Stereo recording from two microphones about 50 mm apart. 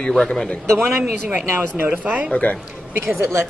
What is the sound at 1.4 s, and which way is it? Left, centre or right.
Speech, right.